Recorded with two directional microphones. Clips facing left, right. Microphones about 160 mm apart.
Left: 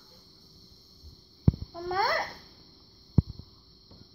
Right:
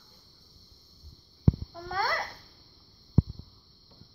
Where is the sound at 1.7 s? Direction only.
10° left (ahead or behind).